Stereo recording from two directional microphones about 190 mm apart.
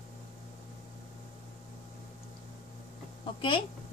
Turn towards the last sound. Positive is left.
turn(degrees=25)  # may be behind; listen again after turning